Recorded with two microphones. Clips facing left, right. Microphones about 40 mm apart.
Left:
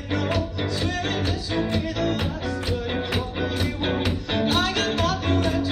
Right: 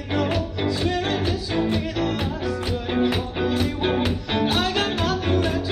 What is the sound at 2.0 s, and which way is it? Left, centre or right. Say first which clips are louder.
Music: right 1 dB; centre.